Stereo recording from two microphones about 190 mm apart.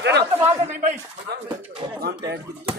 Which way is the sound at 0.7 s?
40° right (ahead or behind).